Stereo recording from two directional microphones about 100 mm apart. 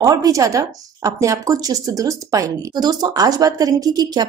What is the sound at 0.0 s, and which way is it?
Speech, 35° right (ahead or behind).